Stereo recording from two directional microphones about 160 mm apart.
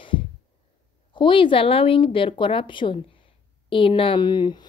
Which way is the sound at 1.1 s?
30° left (ahead or behind).